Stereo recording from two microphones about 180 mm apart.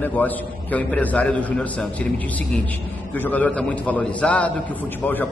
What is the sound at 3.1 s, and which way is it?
A man's voice, 10° left (ahead or behind).